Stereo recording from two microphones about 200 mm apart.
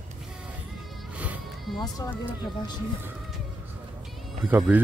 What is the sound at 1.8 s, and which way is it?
Speech, 15° left (ahead or behind).